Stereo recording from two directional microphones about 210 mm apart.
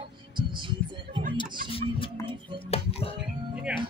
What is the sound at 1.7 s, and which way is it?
Music, 25° left (ahead or behind).